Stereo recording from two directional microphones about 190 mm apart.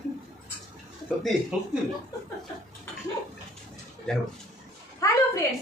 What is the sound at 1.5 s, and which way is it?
Speech, 5° right (ahead or behind).